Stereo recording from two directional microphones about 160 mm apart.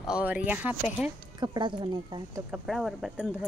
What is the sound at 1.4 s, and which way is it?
Speech, 30° right (ahead or behind).